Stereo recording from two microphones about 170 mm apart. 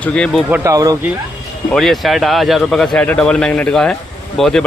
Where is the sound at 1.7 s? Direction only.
Centre (ahead or behind).